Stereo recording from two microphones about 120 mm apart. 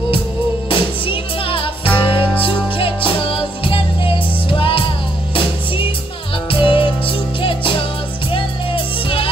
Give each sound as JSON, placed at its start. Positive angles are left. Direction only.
{"t": 0.7, "sound": "music", "side_deg": 45}
{"t": 6.5, "sound": "music", "side_deg": 45}